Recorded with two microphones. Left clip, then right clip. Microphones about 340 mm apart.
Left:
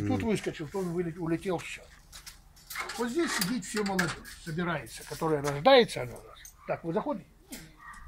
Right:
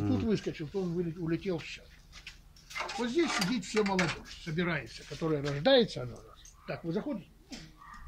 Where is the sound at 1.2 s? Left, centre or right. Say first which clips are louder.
Left 3 dB; left.